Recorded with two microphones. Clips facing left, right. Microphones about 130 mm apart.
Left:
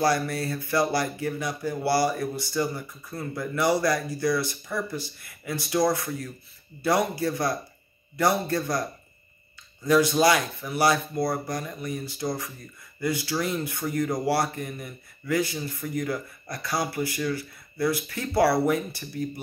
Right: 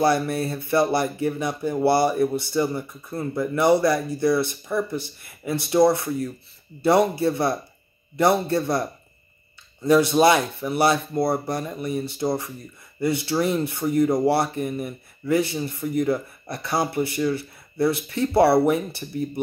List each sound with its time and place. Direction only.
0.0 s speech: 25° right (ahead or behind)
9.8 s speech: 25° right (ahead or behind)